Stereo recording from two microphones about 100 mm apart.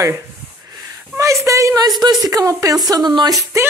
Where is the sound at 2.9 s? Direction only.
45° right (ahead or behind).